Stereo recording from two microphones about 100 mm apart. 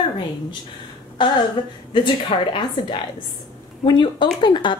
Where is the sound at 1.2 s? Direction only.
50° left (ahead or behind).